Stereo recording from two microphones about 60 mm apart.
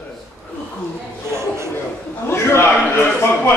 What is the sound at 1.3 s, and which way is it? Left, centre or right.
Speech, right.